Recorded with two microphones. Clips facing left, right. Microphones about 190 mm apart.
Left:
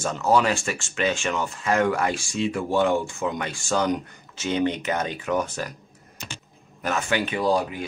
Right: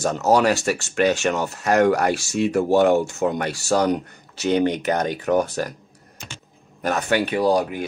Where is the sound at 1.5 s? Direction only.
45° right (ahead or behind).